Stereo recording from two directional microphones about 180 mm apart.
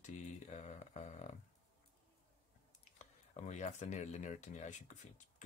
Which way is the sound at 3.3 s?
40° left (ahead or behind).